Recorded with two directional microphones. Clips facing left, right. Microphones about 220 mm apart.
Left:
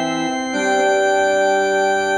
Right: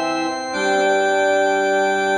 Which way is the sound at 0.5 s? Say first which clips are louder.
Left 1 dB; 30° left (ahead or behind).